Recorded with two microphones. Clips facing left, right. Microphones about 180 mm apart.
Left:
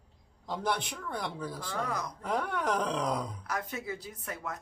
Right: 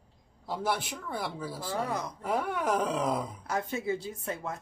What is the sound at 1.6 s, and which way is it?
Speech, 25° right (ahead or behind).